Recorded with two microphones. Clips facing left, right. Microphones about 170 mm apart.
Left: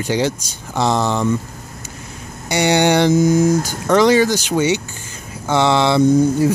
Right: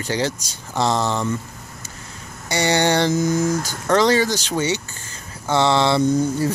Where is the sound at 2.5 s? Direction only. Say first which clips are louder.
Left 4 dB; 15° left (ahead or behind).